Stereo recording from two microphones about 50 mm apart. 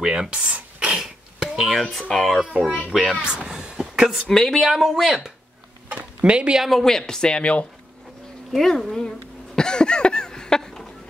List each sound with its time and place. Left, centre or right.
0.0 s a sound: centre
1.0 s a sound: centre
1.7 s speech: centre
2.9 s speech: centre
4.3 s speech: centre
4.6 s speech: centre
5.9 s a sound: right
6.6 s speech: centre; by 7.6 s left
8.5 s speech: centre
9.6 s cough: centre